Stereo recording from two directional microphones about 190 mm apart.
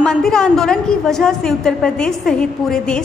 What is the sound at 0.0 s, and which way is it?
A woman's voice, 5° left (ahead or behind).